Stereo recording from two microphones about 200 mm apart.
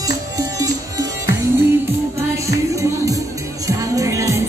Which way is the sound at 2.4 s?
15° right (ahead or behind).